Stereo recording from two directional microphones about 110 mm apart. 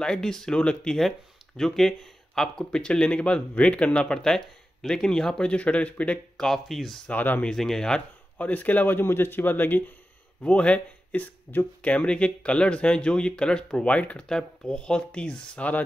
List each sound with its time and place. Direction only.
0.0 s speech: 5° left (ahead or behind)
7.2 s speech: 15° left (ahead or behind)
7.5 s speech: 5° left (ahead or behind)